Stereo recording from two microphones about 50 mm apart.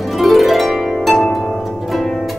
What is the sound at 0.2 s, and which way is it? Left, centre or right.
Harp, centre.